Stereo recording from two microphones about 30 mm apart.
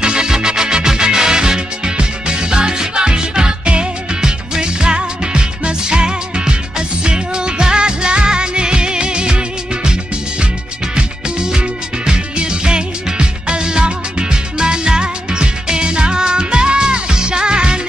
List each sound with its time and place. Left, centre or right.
0.0 s music: right
11.0 s music: right